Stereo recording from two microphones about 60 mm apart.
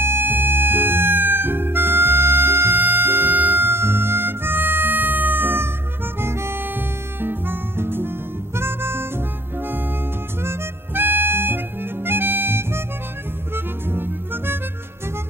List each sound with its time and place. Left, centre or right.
0.0 s music: right
6.2 s harmonica: right
7.2 s music: right
8.5 s harmonica: right
10.4 s harmonica: right
13.8 s music: right